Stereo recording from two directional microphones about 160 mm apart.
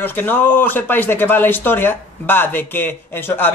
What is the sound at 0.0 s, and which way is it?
Speech, 10° left (ahead or behind).